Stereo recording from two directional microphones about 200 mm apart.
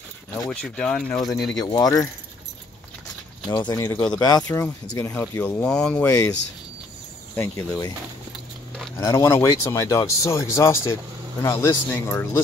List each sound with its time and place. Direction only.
0.5 s speech: 5° left (ahead or behind)
1.6 s speech: 20° left (ahead or behind)
3.4 s speech: 20° left (ahead or behind)
7.3 s speech: 10° left (ahead or behind)
8.9 s speech: 15° left (ahead or behind)